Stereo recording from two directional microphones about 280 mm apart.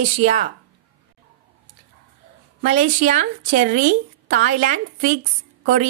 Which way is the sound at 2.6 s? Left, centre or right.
Right.